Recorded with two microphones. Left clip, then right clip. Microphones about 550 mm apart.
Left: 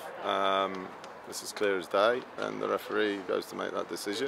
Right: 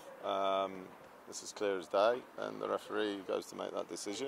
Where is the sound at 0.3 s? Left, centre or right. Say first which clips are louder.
Left 6 dB; centre.